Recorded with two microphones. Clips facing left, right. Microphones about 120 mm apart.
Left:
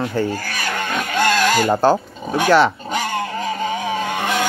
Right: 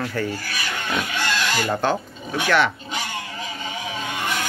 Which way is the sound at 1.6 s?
40° left (ahead or behind).